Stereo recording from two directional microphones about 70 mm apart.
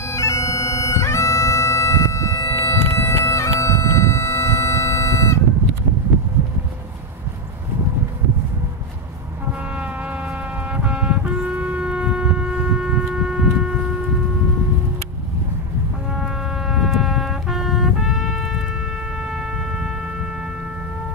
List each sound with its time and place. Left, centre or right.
0.0 s bagpipes: left
9.5 s vehicle: centre
16.2 s music: centre
19.2 s shofar: centre